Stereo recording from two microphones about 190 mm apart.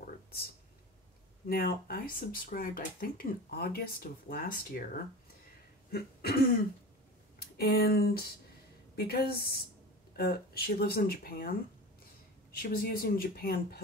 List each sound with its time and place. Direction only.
1.5 s speech: 50° left (ahead or behind)
5.9 s throat clearing: 55° left (ahead or behind)
7.3 s speech: 55° left (ahead or behind)
12.5 s speech: 50° left (ahead or behind)